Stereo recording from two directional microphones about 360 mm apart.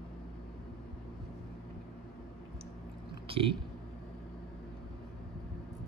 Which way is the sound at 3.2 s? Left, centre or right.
Centre.